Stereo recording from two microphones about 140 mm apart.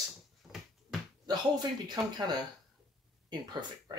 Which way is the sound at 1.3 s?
30° right (ahead or behind).